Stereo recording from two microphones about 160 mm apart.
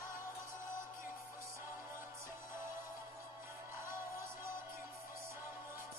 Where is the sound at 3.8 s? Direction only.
15° right (ahead or behind).